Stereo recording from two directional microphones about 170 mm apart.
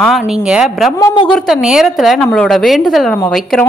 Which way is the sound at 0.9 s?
20° left (ahead or behind).